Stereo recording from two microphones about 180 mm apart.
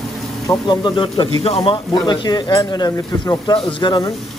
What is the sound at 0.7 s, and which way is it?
Speech, 25° left (ahead or behind).